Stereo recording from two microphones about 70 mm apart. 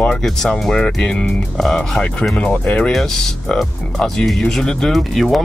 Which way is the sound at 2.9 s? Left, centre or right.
Centre.